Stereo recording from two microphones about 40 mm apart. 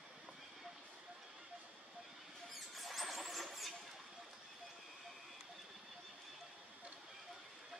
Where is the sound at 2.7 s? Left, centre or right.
Centre.